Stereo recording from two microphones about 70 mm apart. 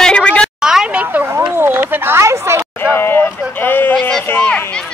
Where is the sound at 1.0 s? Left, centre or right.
Right.